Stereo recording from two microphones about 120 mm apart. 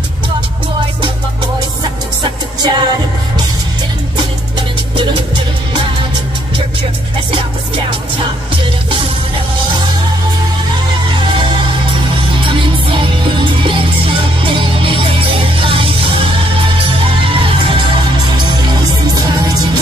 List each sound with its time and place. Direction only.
2.2 s music: 35° right (ahead or behind)
12.4 s music: 45° right (ahead or behind)
19.2 s music: 35° right (ahead or behind)